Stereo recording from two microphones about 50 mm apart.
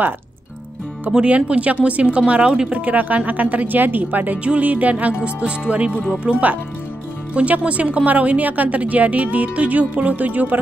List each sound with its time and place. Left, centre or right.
1.2 s speech: right
2.8 s a woman's voice: right